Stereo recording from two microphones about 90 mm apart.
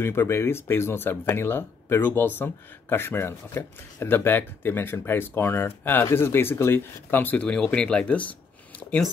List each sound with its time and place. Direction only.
0.0 s speech: 30° left (ahead or behind)